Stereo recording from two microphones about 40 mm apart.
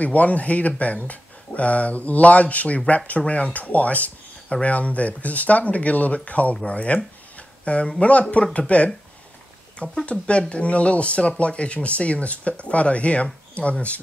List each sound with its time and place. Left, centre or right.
0.0 s speech: left
7.3 s a sound: left
8.0 s speech: left
10.0 s speech: left